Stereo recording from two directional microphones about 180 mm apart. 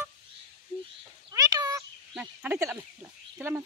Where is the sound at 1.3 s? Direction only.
20° right (ahead or behind).